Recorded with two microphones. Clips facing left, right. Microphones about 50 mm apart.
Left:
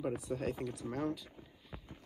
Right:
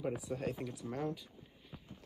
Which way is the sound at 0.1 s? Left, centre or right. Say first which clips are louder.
Left 2 dB; centre.